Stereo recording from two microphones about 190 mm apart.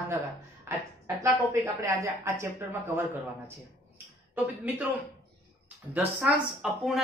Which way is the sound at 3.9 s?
10° right (ahead or behind).